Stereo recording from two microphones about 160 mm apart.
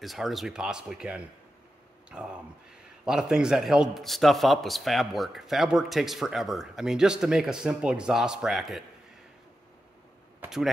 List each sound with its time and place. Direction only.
0.0 s a man's voice: centre (ahead or behind)